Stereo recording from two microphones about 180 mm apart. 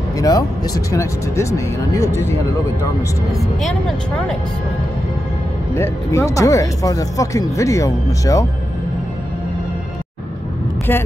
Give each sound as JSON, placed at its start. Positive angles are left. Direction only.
{"t": 0.2, "sound": "speech", "side_deg": 20}
{"t": 3.3, "sound": "speech", "side_deg": 0}
{"t": 5.8, "sound": "speech", "side_deg": 15}
{"t": 10.9, "sound": "speech", "side_deg": 10}